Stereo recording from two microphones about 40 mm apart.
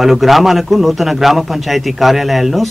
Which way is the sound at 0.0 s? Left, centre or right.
Centre.